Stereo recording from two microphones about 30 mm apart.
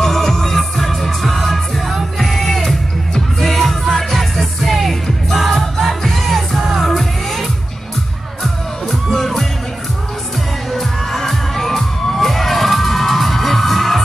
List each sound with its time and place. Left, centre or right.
0.0 s music: centre
8.8 s music: centre
10.7 s crowd: centre